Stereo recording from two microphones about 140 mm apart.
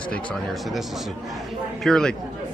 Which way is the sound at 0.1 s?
10° left (ahead or behind).